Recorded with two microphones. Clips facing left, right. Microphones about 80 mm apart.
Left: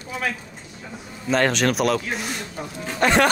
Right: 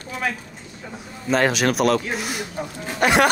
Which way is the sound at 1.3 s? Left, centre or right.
Centre.